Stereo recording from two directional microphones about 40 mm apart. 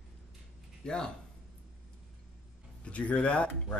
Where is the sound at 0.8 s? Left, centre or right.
Left.